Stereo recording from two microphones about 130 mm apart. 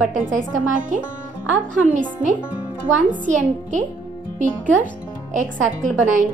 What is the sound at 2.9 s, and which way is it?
Speech, 75° right (ahead or behind).